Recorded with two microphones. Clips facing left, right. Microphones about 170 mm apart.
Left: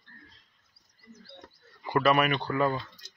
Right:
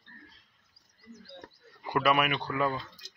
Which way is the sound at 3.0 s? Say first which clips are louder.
Right 2 dB; 90° right.